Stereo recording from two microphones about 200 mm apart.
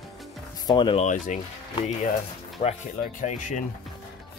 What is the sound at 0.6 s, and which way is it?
Speech, 25° left (ahead or behind).